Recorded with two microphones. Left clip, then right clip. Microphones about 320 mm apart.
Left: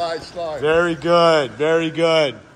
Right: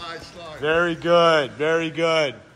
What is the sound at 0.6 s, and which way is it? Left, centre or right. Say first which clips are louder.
Speech: left 3 dB; centre.